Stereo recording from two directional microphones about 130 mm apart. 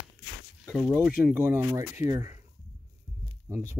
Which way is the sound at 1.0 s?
15° right (ahead or behind).